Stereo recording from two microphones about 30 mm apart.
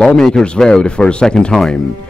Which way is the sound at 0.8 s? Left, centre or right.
Left.